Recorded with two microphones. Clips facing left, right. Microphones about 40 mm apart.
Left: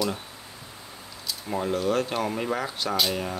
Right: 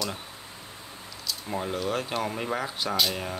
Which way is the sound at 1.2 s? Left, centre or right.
Centre.